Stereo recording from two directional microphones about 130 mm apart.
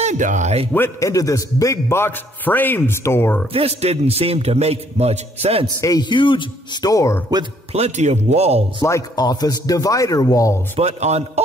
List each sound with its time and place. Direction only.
0.0 s speech: 70° right (ahead or behind)
0.7 s a man's voice: 20° left (ahead or behind)
3.5 s a man's voice: 50° right (ahead or behind)
5.8 s speech: 30° left (ahead or behind)
7.7 s a man's voice: 60° right (ahead or behind)
8.8 s a man's voice: 25° left (ahead or behind)
10.8 s a man's voice: 55° right (ahead or behind)